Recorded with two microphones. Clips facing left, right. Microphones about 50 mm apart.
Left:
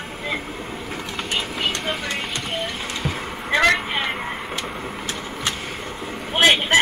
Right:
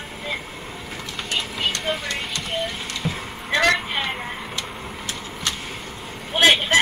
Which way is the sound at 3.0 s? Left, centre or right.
Centre.